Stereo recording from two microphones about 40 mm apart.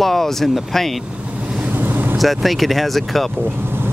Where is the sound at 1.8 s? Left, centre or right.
Right.